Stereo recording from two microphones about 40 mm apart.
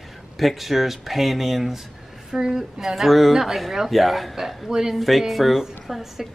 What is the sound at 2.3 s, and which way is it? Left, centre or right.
Speech, centre.